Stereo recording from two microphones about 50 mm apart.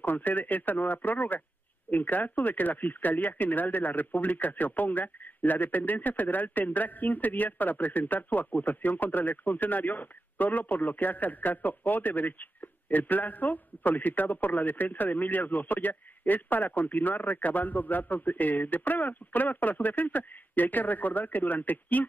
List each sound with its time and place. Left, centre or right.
0.0 s a man's voice: left